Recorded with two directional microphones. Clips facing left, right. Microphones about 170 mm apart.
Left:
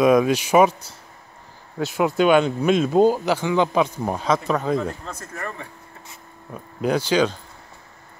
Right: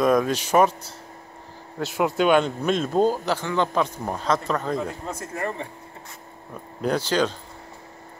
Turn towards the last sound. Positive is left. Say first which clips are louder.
# left 3 dB
turn(degrees=0)  # may be behind; listen again after turning